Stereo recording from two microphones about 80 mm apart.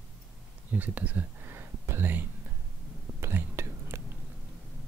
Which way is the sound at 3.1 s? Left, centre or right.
Right.